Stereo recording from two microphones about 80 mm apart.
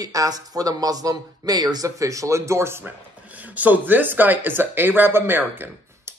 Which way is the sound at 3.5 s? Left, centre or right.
Centre.